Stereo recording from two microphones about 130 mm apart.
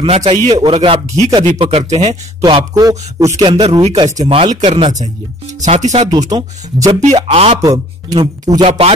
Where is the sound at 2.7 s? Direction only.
25° right (ahead or behind).